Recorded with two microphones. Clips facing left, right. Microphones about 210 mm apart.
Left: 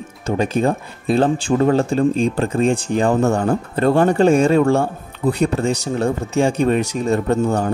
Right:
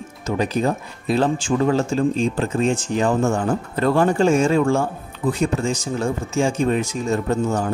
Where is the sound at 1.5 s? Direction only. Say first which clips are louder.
Left 3 dB; 35° left (ahead or behind).